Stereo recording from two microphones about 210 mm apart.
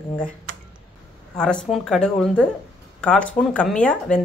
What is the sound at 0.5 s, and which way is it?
Computer keyboard, 70° right (ahead or behind).